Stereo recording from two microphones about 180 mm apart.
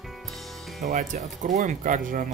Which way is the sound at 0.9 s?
45° right (ahead or behind).